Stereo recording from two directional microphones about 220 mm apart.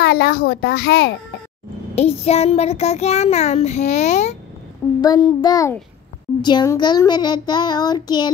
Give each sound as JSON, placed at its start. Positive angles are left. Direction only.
{"t": 0.0, "sound": "a child's voice", "side_deg": 45}
{"t": 2.0, "sound": "a child's voice", "side_deg": 30}
{"t": 5.0, "sound": "a child's voice", "side_deg": 15}